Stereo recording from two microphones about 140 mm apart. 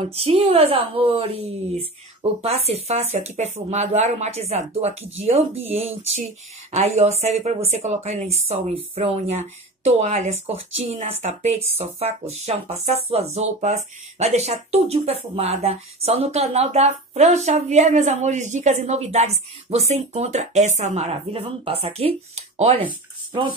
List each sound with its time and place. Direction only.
0.0 s speech: 45° right (ahead or behind)